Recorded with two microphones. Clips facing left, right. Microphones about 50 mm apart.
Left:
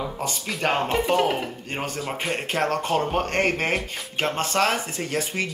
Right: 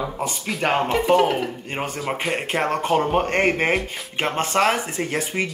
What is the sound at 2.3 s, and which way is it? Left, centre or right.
Speech, right.